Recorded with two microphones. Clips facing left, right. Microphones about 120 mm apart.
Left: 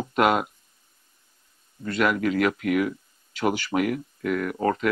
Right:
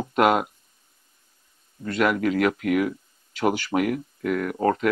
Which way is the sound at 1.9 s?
40° right (ahead or behind).